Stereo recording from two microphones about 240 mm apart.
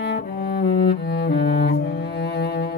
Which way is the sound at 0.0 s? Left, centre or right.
Left.